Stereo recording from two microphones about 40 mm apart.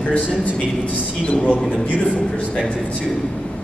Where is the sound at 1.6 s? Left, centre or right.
Centre.